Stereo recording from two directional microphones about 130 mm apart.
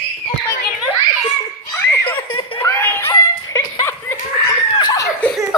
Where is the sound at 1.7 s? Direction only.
20° left (ahead or behind).